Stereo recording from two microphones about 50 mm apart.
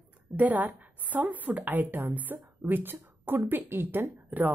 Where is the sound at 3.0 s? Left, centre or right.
Right.